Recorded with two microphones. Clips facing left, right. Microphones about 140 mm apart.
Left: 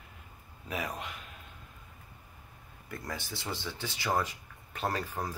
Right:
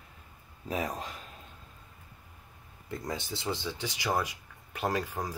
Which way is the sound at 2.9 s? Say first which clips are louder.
Right 4 dB; 20° right (ahead or behind).